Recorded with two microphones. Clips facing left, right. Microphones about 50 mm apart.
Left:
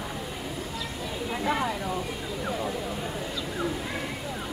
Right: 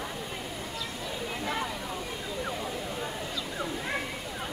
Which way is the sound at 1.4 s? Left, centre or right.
Centre.